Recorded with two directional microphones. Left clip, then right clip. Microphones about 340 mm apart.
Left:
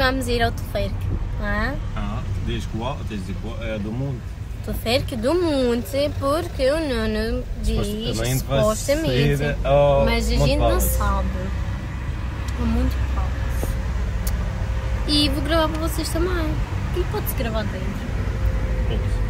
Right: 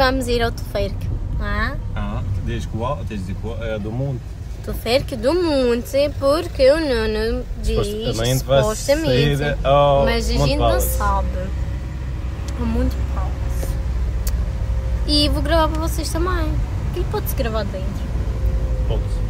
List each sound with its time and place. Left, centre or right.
0.0 s child singing: centre
1.4 s speech: centre
4.8 s speech: centre
9.3 s a sound: right
10.0 s speech: centre
15.0 s child singing: centre